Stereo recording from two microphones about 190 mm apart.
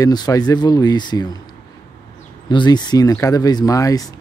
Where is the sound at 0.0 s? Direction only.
20° left (ahead or behind).